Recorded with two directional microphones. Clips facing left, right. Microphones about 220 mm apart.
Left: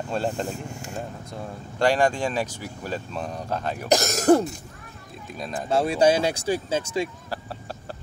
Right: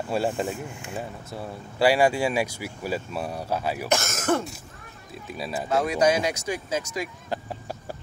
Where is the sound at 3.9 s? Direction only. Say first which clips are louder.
Left 8 dB; 35° left (ahead or behind).